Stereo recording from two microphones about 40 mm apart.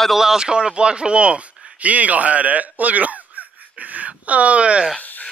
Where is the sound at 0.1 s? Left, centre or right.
Centre; by 4.8 s right.